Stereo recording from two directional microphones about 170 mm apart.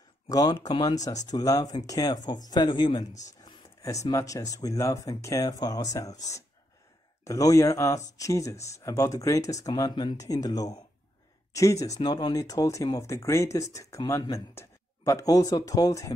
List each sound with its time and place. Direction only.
0.3 s speech: 20° left (ahead or behind)
3.3 s a sound: 20° left (ahead or behind)
4.1 s speech: 20° left (ahead or behind)